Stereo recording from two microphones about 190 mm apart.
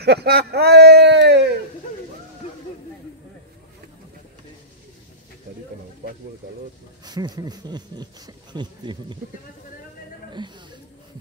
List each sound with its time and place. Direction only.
0.0 s speech: 60° right (ahead or behind)
7.1 s speech: 20° right (ahead or behind)
10.3 s speech: 25° right (ahead or behind)